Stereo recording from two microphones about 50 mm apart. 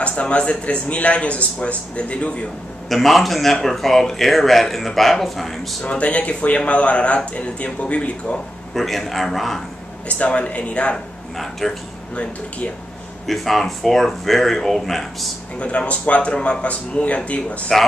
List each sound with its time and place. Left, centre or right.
0.0 s speech: left
2.9 s speech: centre
5.9 s speech: left
8.7 s speech: centre
10.0 s speech: left
11.6 s speech: centre
13.3 s speech: centre
15.6 s speech: left